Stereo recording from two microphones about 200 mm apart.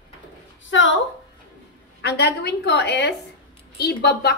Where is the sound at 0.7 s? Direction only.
70° left (ahead or behind).